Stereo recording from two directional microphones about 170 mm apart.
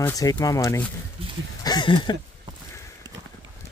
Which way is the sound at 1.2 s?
35° right (ahead or behind).